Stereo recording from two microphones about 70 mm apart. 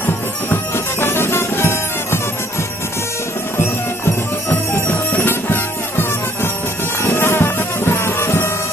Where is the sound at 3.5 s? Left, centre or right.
Left.